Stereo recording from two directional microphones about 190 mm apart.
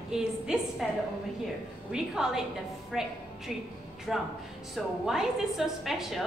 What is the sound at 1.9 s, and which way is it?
A woman's voice, 5° right (ahead or behind).